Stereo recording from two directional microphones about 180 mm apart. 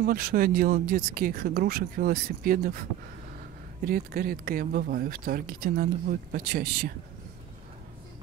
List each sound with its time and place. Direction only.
0.0 s speech: 55° right (ahead or behind)